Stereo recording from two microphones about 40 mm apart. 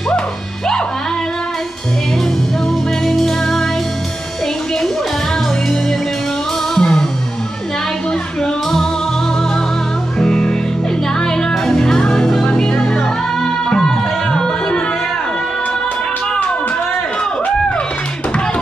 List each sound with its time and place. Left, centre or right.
3.1 s music: centre
6.7 s music: centre
8.4 s music: centre
10.1 s music: centre